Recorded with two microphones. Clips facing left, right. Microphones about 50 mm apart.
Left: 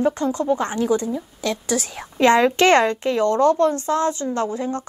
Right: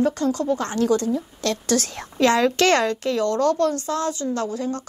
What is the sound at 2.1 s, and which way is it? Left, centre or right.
A woman's voice, left.